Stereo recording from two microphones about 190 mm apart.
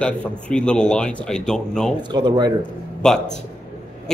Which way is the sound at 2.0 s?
25° right (ahead or behind).